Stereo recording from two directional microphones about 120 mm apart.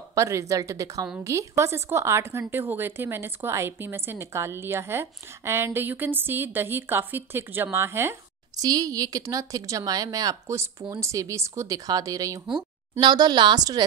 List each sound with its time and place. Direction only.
0.1 s a woman's voice: 25° right (ahead or behind)
8.6 s a woman's voice: 30° right (ahead or behind)